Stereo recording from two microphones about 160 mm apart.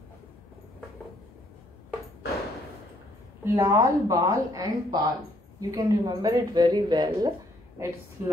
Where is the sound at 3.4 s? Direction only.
15° right (ahead or behind).